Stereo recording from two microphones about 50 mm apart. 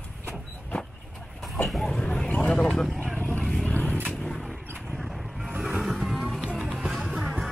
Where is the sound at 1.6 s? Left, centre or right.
Centre.